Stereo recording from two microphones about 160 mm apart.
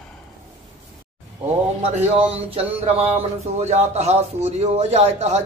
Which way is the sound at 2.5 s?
40° right (ahead or behind).